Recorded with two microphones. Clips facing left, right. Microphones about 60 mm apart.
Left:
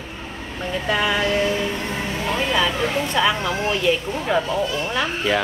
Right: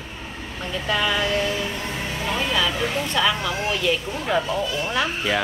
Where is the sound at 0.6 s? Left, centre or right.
Centre.